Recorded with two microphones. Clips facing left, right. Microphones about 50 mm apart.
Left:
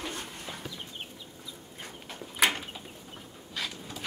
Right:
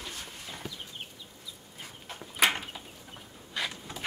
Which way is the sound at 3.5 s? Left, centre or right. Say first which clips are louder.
Right 2 dB; right.